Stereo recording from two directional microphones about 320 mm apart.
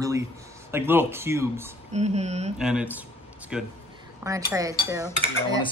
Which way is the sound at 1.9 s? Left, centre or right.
Right.